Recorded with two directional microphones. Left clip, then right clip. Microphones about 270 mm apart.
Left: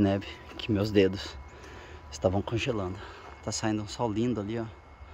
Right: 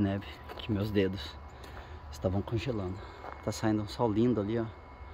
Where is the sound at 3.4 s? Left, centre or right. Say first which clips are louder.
Left 1 dB; centre.